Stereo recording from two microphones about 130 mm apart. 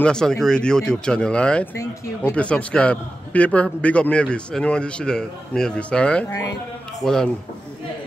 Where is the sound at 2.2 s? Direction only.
10° left (ahead or behind).